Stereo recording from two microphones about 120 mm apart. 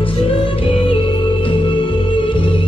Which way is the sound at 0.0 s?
45° left (ahead or behind).